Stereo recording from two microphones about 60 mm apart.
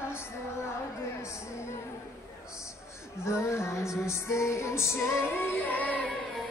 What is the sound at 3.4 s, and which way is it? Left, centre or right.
Music, left.